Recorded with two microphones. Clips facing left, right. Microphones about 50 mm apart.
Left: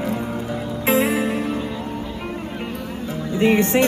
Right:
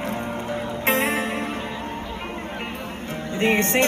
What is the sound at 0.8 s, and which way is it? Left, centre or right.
Music, right.